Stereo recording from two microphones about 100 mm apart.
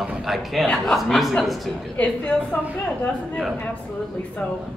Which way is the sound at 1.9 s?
15° left (ahead or behind).